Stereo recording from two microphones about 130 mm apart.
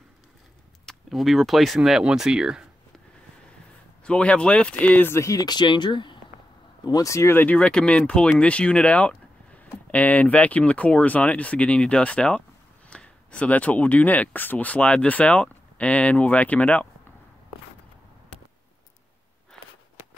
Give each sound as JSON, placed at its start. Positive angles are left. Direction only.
{"t": 0.8, "sound": "speech", "side_deg": 0}
{"t": 4.0, "sound": "speech", "side_deg": 10}